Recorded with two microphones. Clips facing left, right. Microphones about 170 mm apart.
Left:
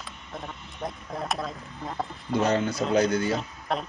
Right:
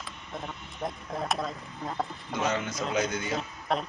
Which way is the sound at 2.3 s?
35° left (ahead or behind).